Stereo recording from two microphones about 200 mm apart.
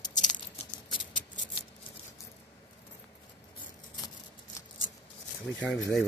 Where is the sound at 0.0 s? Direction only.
20° left (ahead or behind).